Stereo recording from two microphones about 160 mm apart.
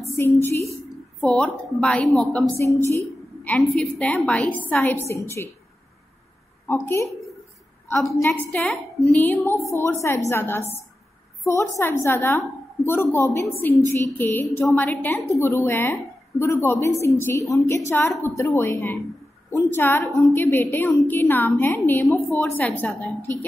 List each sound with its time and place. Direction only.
0.1 s a woman's voice: 15° left (ahead or behind)
1.2 s a woman's voice: 5° left (ahead or behind)
2.6 s a woman's voice: 15° left (ahead or behind)
6.7 s a woman's voice: 15° left (ahead or behind)
8.2 s a woman's voice: 10° left (ahead or behind)